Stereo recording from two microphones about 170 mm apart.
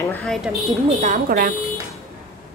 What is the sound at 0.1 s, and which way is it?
Speech, centre (ahead or behind).